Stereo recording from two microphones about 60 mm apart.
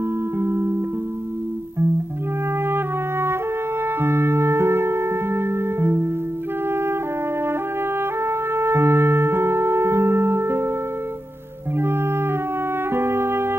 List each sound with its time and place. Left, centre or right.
0.4 s music: right
2.7 s music: right
8.2 s music: right
11.8 s music: right